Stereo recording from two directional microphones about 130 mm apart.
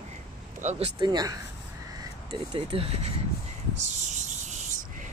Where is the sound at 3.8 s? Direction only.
65° right (ahead or behind).